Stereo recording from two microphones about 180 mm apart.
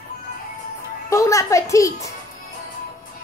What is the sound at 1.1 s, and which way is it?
A child's voice, 15° left (ahead or behind).